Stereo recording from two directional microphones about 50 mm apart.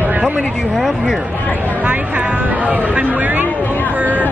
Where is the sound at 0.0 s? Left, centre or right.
Right.